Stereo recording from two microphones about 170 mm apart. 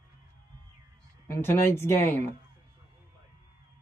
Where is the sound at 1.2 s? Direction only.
15° left (ahead or behind).